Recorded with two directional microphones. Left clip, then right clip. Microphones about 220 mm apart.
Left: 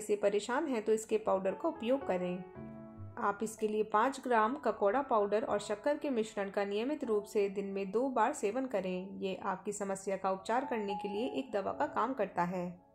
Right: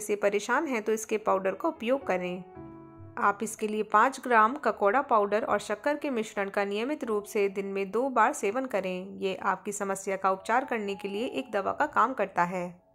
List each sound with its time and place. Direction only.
0.0 s a woman's voice: 15° right (ahead or behind)